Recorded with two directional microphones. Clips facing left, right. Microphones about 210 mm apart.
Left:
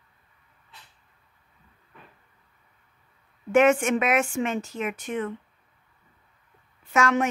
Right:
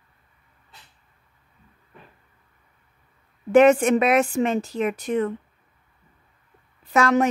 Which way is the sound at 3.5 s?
35° right (ahead or behind).